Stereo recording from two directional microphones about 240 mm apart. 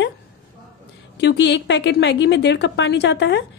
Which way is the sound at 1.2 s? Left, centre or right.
Left.